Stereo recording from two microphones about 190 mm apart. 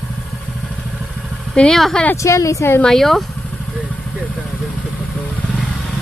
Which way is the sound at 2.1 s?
15° left (ahead or behind).